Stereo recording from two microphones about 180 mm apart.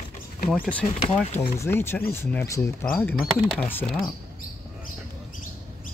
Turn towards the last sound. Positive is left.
turn(degrees=5)  # may be behind; listen again after turning